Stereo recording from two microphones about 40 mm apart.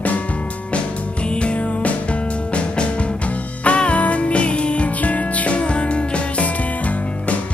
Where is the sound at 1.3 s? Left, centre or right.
Left.